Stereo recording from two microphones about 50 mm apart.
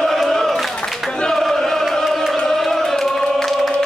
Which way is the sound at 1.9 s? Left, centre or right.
Centre.